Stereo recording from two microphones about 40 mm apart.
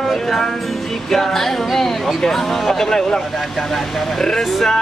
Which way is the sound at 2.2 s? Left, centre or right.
Centre.